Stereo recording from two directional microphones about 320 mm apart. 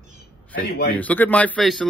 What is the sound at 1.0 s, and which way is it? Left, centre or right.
Speech, centre.